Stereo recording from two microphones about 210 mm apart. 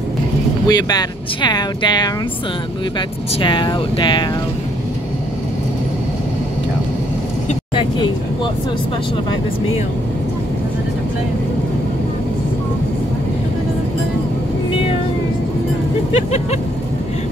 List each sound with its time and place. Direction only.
0.7 s speech: 20° left (ahead or behind)
3.3 s speech: 20° left (ahead or behind)
16.1 s vehicle: 30° left (ahead or behind)